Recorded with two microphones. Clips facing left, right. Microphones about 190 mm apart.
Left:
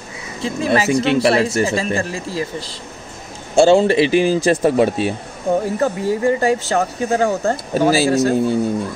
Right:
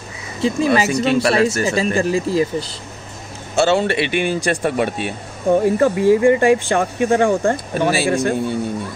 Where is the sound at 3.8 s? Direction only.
35° left (ahead or behind).